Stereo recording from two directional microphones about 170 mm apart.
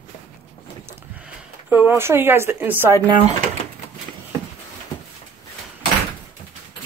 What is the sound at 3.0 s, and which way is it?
Speech, 30° right (ahead or behind).